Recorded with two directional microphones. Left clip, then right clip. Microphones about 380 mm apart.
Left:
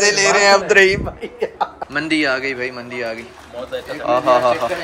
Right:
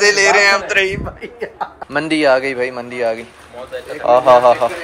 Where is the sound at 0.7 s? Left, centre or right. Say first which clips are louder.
Left 4 dB; left.